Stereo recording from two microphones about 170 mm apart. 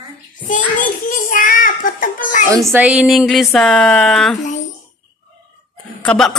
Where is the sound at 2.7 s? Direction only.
5° right (ahead or behind).